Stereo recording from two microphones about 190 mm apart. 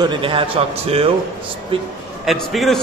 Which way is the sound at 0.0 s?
25° right (ahead or behind).